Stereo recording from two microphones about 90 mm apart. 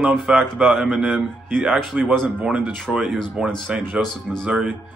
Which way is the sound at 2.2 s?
5° right (ahead or behind).